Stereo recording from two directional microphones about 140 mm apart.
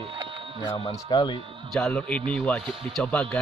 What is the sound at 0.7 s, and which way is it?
Speech, 45° left (ahead or behind).